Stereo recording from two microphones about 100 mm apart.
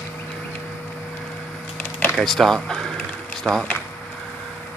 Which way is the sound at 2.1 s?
5° left (ahead or behind).